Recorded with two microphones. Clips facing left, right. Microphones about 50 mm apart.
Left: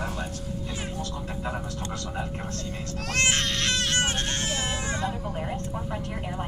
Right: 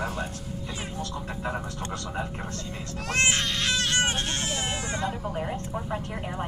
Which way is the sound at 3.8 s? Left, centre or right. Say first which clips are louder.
Right 1 dB; centre.